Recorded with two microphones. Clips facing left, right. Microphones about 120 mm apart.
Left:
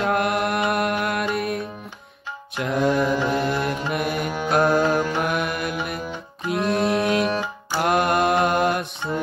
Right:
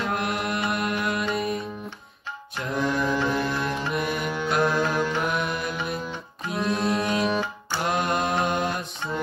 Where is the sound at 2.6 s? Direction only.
55° left (ahead or behind).